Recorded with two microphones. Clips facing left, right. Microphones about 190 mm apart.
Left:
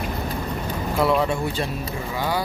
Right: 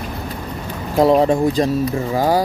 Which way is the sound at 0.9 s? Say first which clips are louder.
Right 8 dB; 40° right (ahead or behind).